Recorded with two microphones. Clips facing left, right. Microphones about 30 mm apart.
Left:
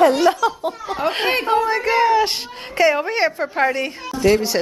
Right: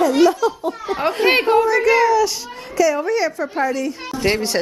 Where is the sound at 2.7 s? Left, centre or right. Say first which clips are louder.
Even; left.